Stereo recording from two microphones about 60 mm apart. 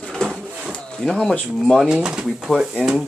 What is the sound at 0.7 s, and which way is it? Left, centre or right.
Wood, centre.